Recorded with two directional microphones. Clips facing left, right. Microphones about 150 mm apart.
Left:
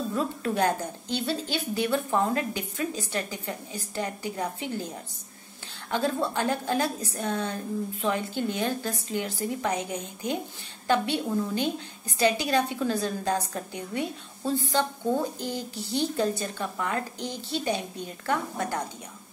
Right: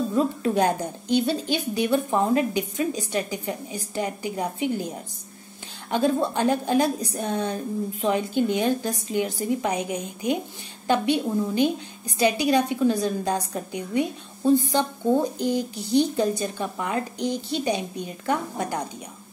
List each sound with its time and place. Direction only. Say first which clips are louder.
0.1 s a woman's voice: right 6 dB; 20° right (ahead or behind)